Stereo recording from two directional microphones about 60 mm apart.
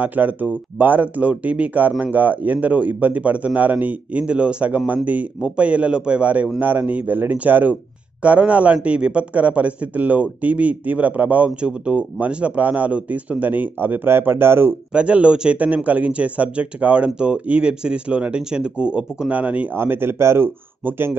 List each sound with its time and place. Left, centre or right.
0.0 s speech: right
14.9 s speech: centre
19.7 s speech: right